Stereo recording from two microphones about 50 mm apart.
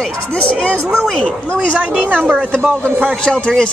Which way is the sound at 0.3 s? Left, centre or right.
Left.